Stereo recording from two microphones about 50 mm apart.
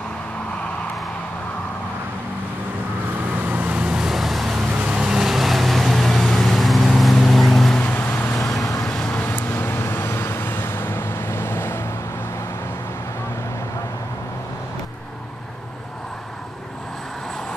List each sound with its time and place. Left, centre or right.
3.1 s vehicle: right
3.8 s vehicle: centre
4.7 s vehicle: right
5.1 s vehicle: centre
7.8 s vehicle: left
8.8 s vehicle: centre
9.2 s vehicle: left